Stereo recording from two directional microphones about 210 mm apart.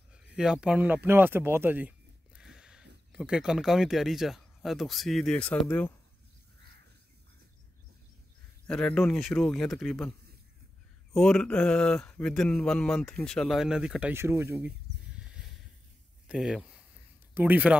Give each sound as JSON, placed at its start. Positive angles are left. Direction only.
{"t": 0.4, "sound": "speech", "side_deg": -5}
{"t": 8.6, "sound": "speech", "side_deg": 5}
{"t": 11.1, "sound": "speech", "side_deg": 5}
{"t": 16.3, "sound": "speech", "side_deg": 0}